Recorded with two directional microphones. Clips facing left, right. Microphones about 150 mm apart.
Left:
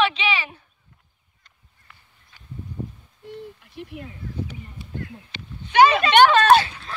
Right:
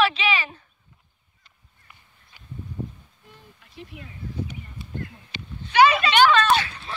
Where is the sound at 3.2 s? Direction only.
70° left (ahead or behind).